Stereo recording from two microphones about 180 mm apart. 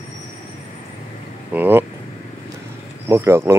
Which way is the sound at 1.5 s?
10° right (ahead or behind).